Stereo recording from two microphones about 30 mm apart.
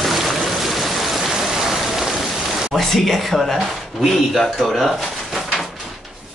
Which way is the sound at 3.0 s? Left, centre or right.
Centre.